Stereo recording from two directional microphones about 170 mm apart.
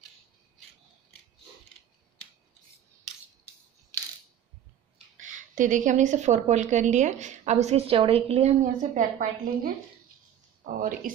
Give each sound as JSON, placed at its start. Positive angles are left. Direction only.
{"t": 4.9, "sound": "speech", "side_deg": -45}